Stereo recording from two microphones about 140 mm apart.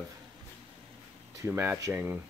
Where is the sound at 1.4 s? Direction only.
15° right (ahead or behind).